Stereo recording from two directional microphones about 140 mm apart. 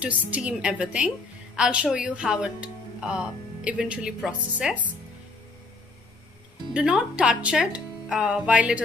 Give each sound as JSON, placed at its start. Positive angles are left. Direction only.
{"t": 0.0, "sound": "speech", "side_deg": -10}
{"t": 6.7, "sound": "speech", "side_deg": -5}